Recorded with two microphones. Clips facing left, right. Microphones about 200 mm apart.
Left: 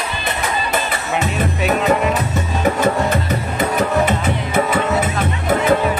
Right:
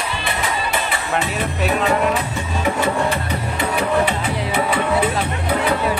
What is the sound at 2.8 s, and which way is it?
Music, 45° left (ahead or behind).